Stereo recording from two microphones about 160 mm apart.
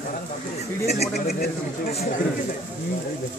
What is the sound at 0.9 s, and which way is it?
Speech, 80° left.